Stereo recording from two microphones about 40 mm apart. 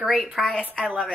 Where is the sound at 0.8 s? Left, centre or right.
Right.